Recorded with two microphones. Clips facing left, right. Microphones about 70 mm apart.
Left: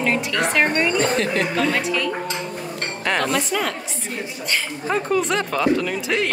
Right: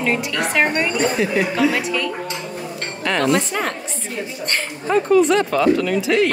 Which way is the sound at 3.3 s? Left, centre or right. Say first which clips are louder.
Right 3 dB; right.